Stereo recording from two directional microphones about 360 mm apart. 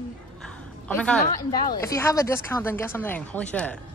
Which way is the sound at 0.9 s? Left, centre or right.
Centre.